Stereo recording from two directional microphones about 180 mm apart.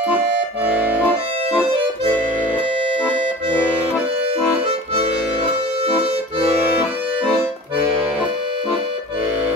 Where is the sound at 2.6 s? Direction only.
30° right (ahead or behind).